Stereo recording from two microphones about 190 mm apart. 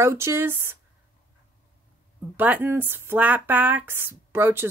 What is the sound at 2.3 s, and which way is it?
Speech, 10° right (ahead or behind).